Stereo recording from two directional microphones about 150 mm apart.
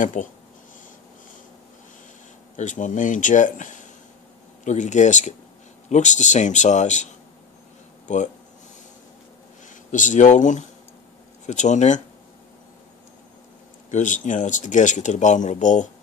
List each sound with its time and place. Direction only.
0.0 s speech: 60° left (ahead or behind)
2.5 s speech: 55° left (ahead or behind)
9.8 s speech: 55° left (ahead or behind)
13.8 s speech: 55° left (ahead or behind)